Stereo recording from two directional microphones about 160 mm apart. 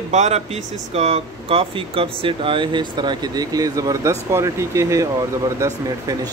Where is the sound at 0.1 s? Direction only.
45° right (ahead or behind).